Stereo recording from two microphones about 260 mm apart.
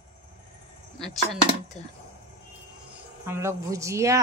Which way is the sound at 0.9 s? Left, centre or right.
Centre.